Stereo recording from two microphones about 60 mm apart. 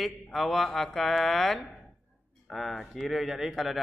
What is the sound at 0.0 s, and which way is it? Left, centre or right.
Speech, centre.